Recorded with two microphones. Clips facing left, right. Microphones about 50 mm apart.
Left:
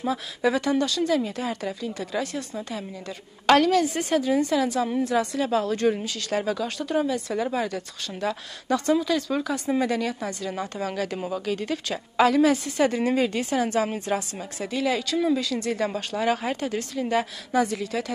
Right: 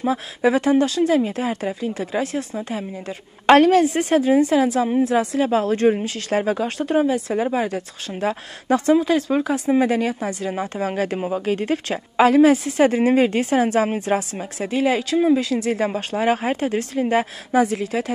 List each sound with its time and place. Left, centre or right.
0.0 s speech: right
3.8 s speech: right
4.1 s speech: right
4.8 s speech: right